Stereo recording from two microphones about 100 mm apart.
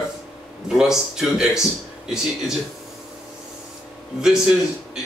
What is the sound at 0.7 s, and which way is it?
Speech, 5° right (ahead or behind).